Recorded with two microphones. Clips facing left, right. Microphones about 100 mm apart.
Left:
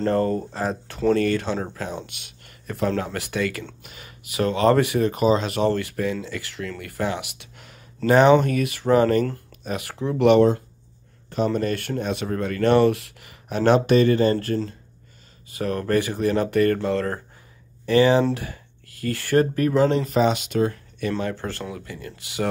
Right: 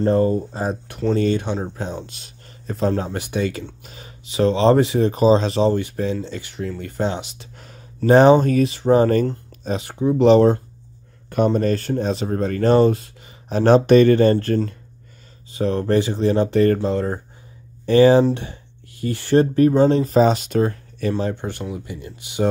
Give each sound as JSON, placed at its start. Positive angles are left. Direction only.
{"t": 0.0, "sound": "speech", "side_deg": -15}
{"t": 2.0, "sound": "a sound", "side_deg": -35}
{"t": 3.0, "sound": "speech", "side_deg": -20}
{"t": 7.5, "sound": "a sound", "side_deg": -40}
{"t": 8.1, "sound": "speech", "side_deg": -35}
{"t": 11.2, "sound": "speech", "side_deg": -55}
{"t": 11.5, "sound": "speech", "side_deg": -35}
{"t": 15.5, "sound": "speech", "side_deg": -25}
{"t": 17.8, "sound": "speech", "side_deg": -35}
{"t": 21.2, "sound": "speech", "side_deg": -20}